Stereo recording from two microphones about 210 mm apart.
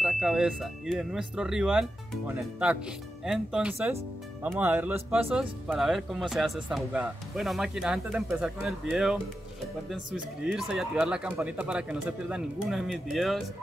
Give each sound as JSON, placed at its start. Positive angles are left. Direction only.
{"t": 0.0, "sound": "speech", "side_deg": 0}
{"t": 10.4, "sound": "speech", "side_deg": -5}